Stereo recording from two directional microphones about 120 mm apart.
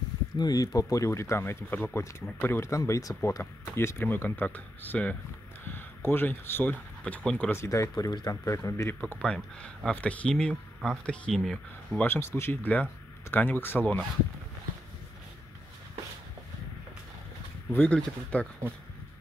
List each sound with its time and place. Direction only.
0.4 s speech: 30° left (ahead or behind); by 7.5 s 10° left (ahead or behind)
7.5 s speech: 25° left (ahead or behind)
7.9 s speech: 35° left (ahead or behind)
9.2 s speech: 10° left (ahead or behind)
12.1 s speech: 20° left (ahead or behind)
17.7 s speech: 10° left (ahead or behind)